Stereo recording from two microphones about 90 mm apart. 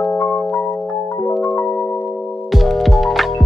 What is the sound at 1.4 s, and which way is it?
Music, 20° left (ahead or behind).